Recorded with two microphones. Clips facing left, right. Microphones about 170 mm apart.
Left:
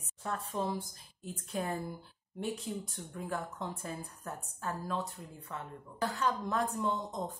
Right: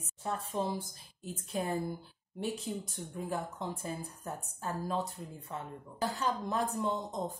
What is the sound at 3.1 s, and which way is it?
A woman's voice, 20° right (ahead or behind).